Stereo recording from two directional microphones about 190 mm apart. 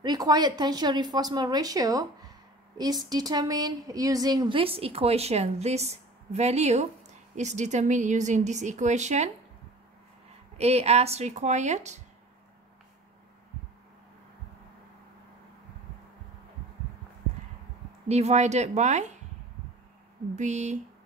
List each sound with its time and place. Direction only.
0.0 s a woman's voice: 20° right (ahead or behind); by 9.3 s 40° right (ahead or behind)
10.6 s speech: 35° right (ahead or behind)
18.0 s speech: 35° right (ahead or behind)
20.3 s speech: 40° right (ahead or behind)